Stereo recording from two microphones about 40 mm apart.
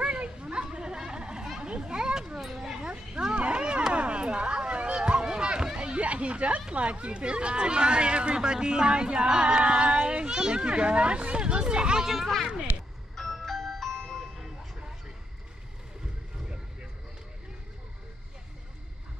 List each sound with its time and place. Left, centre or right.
0.0 s a sound: right
1.6 s children playing: right
3.3 s wild animals: right
3.9 s a sound: right
6.7 s speech: right; by 12.3 s centre
13.1 s music: centre